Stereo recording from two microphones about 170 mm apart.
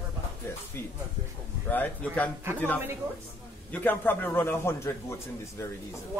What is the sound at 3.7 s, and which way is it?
Speech, 10° left (ahead or behind).